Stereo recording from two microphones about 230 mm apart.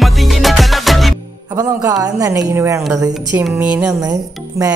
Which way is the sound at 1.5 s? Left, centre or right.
Centre.